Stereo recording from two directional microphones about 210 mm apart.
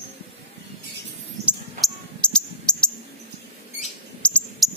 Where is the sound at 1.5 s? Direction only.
Centre (ahead or behind).